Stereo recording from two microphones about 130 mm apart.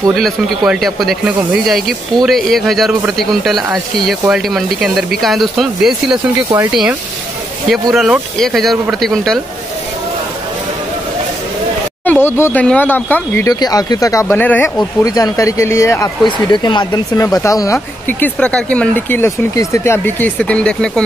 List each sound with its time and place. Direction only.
0.1 s speech: centre (ahead or behind)
7.9 s speech: 5° right (ahead or behind)
12.0 s speech: 15° left (ahead or behind)
13.5 s speech: 30° left (ahead or behind)
14.3 s speech: 15° left (ahead or behind)
14.8 s speech: 30° left (ahead or behind)
16.3 s speech: 35° left (ahead or behind)
17.7 s speech: 10° left (ahead or behind)